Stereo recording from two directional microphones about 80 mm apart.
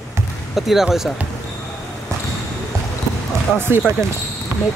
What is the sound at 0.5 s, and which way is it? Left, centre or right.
Speech, centre.